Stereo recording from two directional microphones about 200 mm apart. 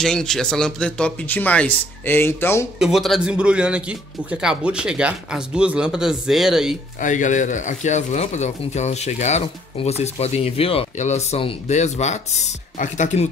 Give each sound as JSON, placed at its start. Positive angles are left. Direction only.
{"t": 0.0, "sound": "speech", "side_deg": 5}
{"t": 2.8, "sound": "speech", "side_deg": 0}
{"t": 7.0, "sound": "speech", "side_deg": 40}